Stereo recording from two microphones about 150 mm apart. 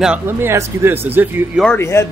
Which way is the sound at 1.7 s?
15° left (ahead or behind).